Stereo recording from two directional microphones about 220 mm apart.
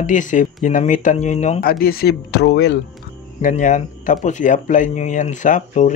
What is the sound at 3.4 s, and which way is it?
Speech, 35° left (ahead or behind).